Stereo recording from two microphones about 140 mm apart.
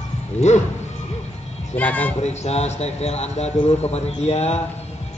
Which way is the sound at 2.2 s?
50° left (ahead or behind).